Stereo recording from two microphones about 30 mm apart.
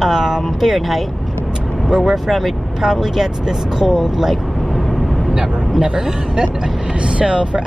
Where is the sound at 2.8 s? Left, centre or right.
Centre.